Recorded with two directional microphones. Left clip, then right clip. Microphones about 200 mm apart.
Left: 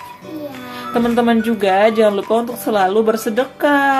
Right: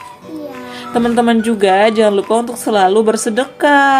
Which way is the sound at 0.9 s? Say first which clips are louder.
Right 2 dB; 15° right (ahead or behind).